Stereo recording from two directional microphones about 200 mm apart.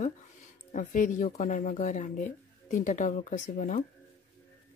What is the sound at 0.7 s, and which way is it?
Speech, 40° left (ahead or behind).